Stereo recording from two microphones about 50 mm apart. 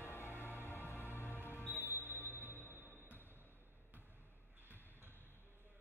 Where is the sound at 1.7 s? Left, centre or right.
Right.